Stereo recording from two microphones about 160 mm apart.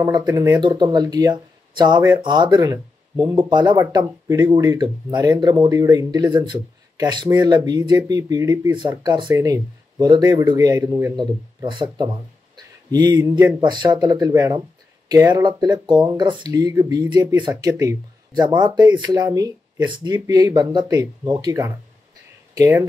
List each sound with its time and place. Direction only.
0.0 s speech: 25° right (ahead or behind)
11.1 s speech: 30° right (ahead or behind)